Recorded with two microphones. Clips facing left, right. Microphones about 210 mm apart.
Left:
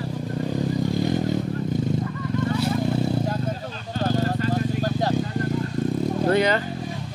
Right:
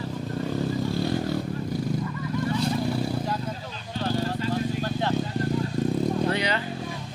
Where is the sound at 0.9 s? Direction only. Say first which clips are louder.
Left 3 dB; 15° left (ahead or behind).